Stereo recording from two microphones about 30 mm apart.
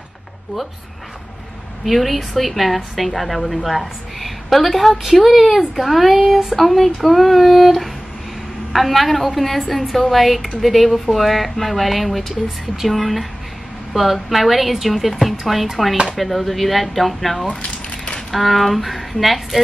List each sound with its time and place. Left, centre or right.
1.9 s a woman's voice: centre
17.6 s crumpling: left
18.3 s a woman's voice: centre